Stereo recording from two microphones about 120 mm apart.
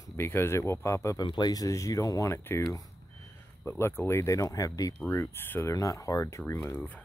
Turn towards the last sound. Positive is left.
turn(degrees=20)  # may be behind; listen again after turning